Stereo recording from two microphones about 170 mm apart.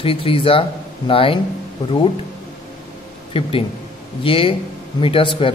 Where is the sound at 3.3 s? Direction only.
30° left (ahead or behind).